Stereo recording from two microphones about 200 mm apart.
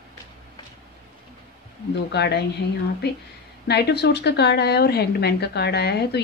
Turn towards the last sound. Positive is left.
turn(degrees=55)  # may be behind; listen again after turning